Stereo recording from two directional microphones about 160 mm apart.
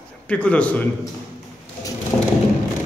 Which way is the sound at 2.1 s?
10° left (ahead or behind).